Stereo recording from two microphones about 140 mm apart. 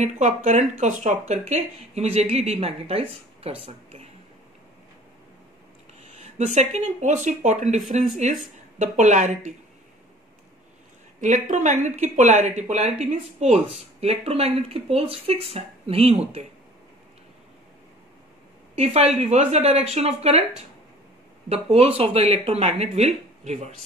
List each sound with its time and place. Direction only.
0.0 s speech: 55° right (ahead or behind)
6.0 s speech: 50° right (ahead or behind)
11.1 s speech: 65° right (ahead or behind); by 16.4 s 50° right (ahead or behind)
18.8 s speech: 50° right (ahead or behind)
21.5 s speech: 45° right (ahead or behind)